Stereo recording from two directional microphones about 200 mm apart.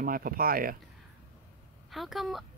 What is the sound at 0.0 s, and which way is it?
Speech, 45° right (ahead or behind).